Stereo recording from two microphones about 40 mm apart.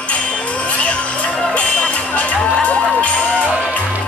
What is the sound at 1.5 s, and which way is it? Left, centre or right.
Music, left.